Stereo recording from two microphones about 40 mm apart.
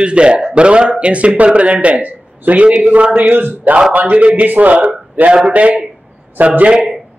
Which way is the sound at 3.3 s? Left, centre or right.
Right.